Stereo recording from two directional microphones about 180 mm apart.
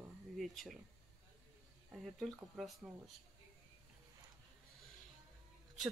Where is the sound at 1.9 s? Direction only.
Centre (ahead or behind).